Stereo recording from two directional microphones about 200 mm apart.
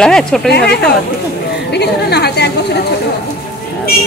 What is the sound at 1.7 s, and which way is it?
Speech, 55° left (ahead or behind).